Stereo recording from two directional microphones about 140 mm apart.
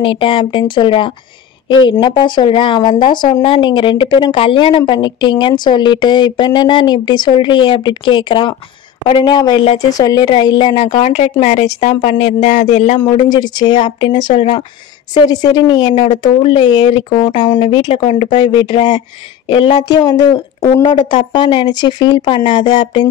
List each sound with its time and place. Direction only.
0.0 s speech: 35° left (ahead or behind)
11.1 s a woman's voice: 50° left (ahead or behind)
13.0 s speech: 35° left (ahead or behind)